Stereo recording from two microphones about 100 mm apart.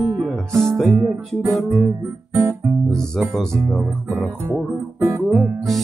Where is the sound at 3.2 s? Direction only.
Centre (ahead or behind).